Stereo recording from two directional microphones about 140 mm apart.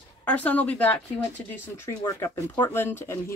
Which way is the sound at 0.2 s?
10° left (ahead or behind).